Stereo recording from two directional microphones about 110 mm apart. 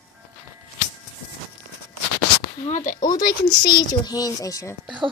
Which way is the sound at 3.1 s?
40° left (ahead or behind).